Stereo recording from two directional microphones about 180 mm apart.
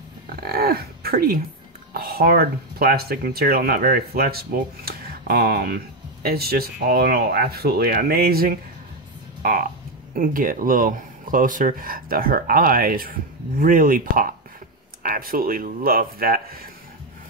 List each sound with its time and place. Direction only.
0.4 s speech: 60° right (ahead or behind)
9.4 s frog: 50° right (ahead or behind)
10.1 s speech: 50° right (ahead or behind)